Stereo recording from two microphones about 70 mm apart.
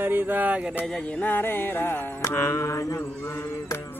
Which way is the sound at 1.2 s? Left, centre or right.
Left.